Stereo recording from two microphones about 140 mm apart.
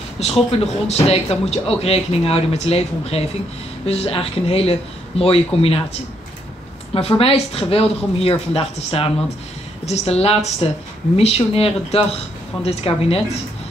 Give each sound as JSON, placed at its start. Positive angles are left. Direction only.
{"t": 0.2, "sound": "a man's voice", "side_deg": 45}
{"t": 6.9, "sound": "a man's voice", "side_deg": 40}